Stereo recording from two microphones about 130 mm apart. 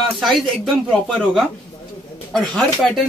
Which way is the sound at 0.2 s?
Centre (ahead or behind).